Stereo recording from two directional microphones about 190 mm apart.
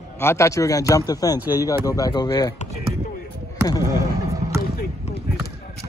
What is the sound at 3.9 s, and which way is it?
Vehicle, 15° right (ahead or behind).